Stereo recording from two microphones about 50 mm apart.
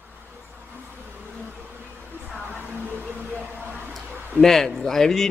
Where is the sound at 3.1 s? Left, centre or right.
Right.